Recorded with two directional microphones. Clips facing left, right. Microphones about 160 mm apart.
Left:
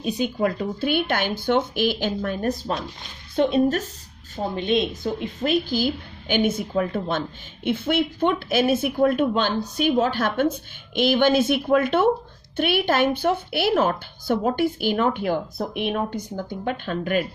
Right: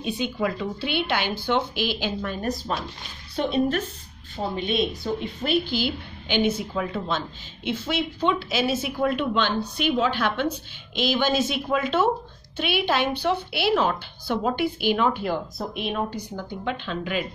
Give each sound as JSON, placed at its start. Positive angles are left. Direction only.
{"t": 0.0, "sound": "a woman's voice", "side_deg": 40}
{"t": 5.2, "sound": "a woman's voice", "side_deg": 45}